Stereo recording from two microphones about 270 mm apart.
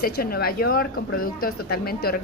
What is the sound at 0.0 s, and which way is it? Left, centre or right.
A woman's voice, left.